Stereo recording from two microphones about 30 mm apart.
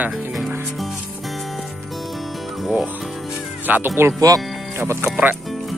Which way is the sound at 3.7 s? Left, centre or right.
Right.